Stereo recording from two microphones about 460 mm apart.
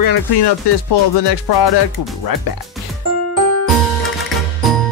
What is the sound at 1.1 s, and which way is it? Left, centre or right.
Music, left.